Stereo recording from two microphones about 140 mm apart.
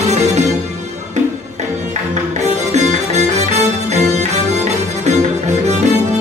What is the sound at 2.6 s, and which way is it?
Music, 55° right (ahead or behind).